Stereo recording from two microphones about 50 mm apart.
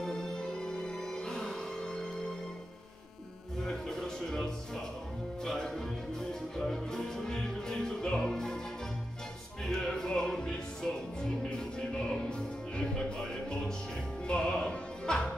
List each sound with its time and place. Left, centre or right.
0.0 s music: centre
3.6 s music: centre
9.7 s music: centre
14.2 s opera: centre